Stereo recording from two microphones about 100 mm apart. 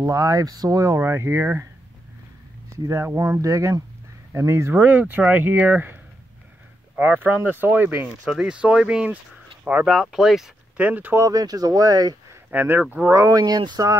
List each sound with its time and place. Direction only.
0.0 s speech: 35° right (ahead or behind)
2.7 s speech: 25° right (ahead or behind)
7.0 s speech: 20° right (ahead or behind)
8.3 s speech: 5° right (ahead or behind)
11.2 s speech: 40° right (ahead or behind)
12.4 s speech: 15° right (ahead or behind)
13.1 s speech: 35° right (ahead or behind)